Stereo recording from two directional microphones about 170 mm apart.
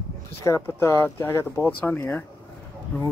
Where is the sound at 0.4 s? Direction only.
15° left (ahead or behind).